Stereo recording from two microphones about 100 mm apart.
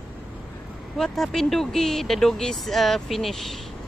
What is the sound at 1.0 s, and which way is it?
Speech, 5° left (ahead or behind).